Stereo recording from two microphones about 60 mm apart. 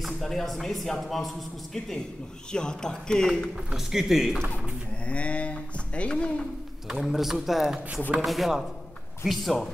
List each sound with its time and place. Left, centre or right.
0.0 s a man's voice: centre
3.7 s speech: centre
5.0 s speech: centre
6.9 s speech: centre